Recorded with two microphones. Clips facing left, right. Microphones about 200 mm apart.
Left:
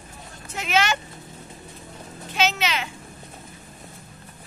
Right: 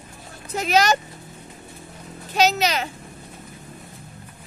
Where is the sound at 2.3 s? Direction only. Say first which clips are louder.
Right 4 dB; 40° right (ahead or behind).